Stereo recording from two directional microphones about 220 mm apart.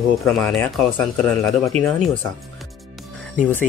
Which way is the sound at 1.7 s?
30° right (ahead or behind).